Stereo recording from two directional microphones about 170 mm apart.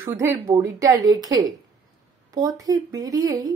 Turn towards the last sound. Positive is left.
turn(degrees=-20)  # may be behind; listen again after turning